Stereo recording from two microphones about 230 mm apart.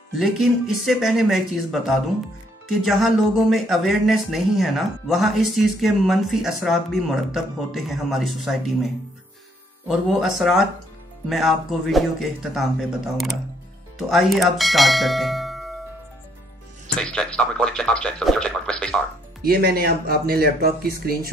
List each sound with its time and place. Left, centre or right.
0.2 s speech: centre
9.8 s speech: centre
16.8 s speech: centre
19.4 s speech: right